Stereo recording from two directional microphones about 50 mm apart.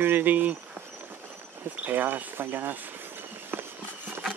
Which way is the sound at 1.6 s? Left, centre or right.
Right.